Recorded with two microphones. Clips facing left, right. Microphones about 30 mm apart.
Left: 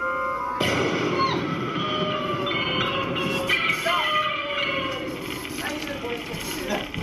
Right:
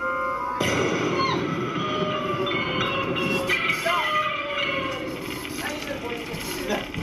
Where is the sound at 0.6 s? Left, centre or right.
Left.